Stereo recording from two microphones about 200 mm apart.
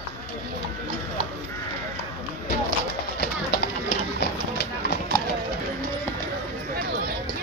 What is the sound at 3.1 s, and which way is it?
Run, 55° left (ahead or behind).